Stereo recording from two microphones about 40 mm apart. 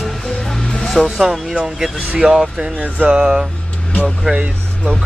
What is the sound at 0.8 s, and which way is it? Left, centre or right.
Music, centre.